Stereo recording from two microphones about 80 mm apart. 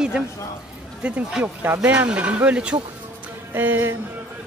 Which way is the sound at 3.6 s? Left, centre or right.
Right.